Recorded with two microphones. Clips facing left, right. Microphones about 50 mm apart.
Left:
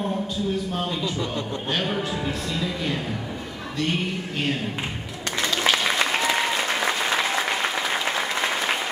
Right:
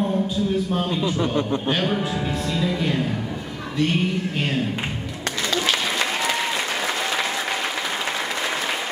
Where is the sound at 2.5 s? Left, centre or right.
Centre.